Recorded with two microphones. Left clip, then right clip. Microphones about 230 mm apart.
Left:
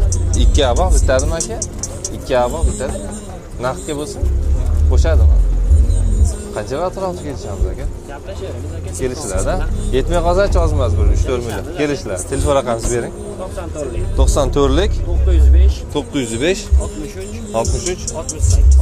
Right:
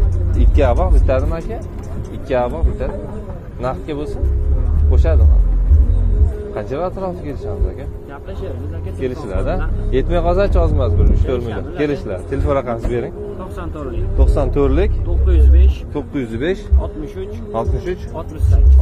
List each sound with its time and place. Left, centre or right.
0.4 s speech: centre
6.5 s speech: centre
9.0 s speech: centre
14.1 s speech: centre
15.9 s speech: centre